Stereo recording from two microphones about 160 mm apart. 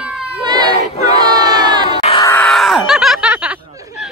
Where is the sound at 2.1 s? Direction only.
20° left (ahead or behind).